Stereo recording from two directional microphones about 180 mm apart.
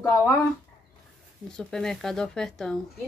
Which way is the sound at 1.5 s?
5° left (ahead or behind).